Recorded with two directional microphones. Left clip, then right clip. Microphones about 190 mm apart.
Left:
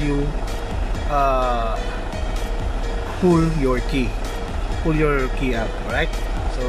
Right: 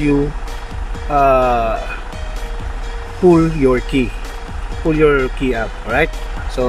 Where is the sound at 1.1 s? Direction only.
10° right (ahead or behind).